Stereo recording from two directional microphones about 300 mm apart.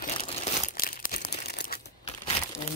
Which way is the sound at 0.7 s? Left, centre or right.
Left.